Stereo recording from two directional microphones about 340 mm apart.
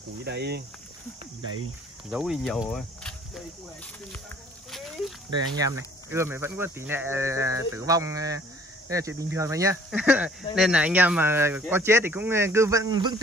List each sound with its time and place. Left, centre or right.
0.2 s speech: right
2.0 s speech: centre
4.6 s a sound: centre
5.6 s speech: centre